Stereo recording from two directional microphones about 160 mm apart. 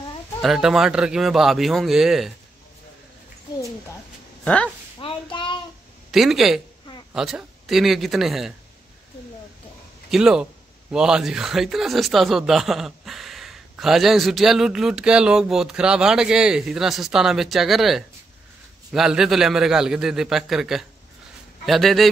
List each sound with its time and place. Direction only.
0.4 s speech: centre (ahead or behind)
5.0 s child singing: 30° left (ahead or behind)
6.1 s speech: centre (ahead or behind)
10.1 s speech: 5° right (ahead or behind)